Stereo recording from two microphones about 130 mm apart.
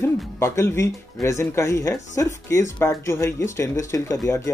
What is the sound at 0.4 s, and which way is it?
Speech, 20° left (ahead or behind).